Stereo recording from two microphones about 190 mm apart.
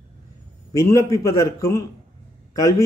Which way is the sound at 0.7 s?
15° left (ahead or behind).